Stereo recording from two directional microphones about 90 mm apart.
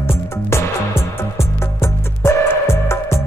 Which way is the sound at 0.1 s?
30° left (ahead or behind).